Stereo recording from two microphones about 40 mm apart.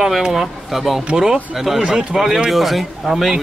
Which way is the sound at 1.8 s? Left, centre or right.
Right.